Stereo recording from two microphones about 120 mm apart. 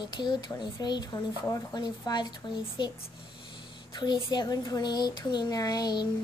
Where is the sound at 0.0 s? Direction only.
40° left (ahead or behind).